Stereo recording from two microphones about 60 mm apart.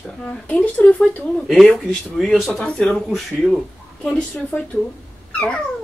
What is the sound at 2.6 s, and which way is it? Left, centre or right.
Speech, centre.